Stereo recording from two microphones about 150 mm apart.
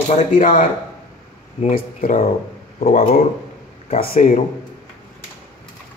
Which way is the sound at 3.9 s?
75° left (ahead or behind).